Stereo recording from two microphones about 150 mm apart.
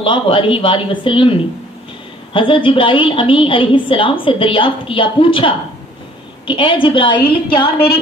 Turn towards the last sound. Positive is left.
turn(degrees=35)  # may be behind; listen again after turning